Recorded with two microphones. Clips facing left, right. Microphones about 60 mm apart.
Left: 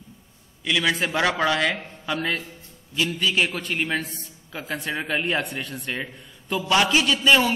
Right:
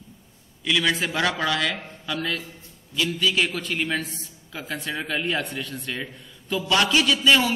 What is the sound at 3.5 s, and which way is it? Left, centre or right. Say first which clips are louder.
A man's voice: even; centre.